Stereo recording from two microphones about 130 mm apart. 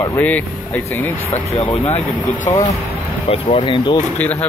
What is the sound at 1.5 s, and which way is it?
Speech, 45° left (ahead or behind).